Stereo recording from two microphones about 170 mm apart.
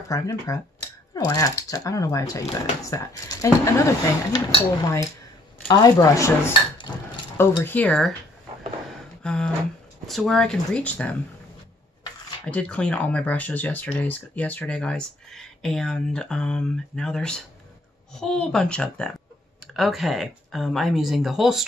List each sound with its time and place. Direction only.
0.1 s speech: 20° left (ahead or behind)
5.7 s speech: 20° left (ahead or behind); by 8.1 s 5° left (ahead or behind)
9.2 s a sound: 5° left (ahead or behind)
10.0 s speech: centre (ahead or behind)
12.4 s speech: 5° left (ahead or behind)